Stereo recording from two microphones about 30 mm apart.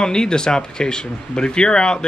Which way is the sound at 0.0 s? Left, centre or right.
Left.